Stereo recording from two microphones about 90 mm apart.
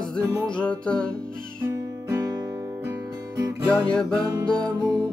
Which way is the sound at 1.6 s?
35° right (ahead or behind).